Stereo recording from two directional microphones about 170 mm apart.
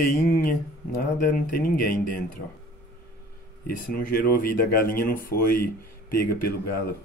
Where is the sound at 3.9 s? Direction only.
60° left (ahead or behind).